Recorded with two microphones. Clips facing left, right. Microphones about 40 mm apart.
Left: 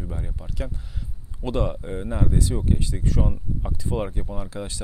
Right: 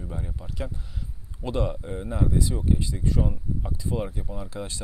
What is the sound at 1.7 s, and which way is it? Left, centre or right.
Speech, centre.